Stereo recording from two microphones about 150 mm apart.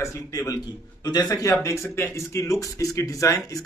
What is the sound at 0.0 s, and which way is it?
A man's voice, 20° left (ahead or behind).